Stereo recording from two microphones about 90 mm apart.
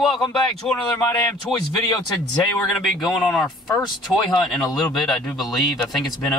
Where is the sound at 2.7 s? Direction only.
Centre (ahead or behind).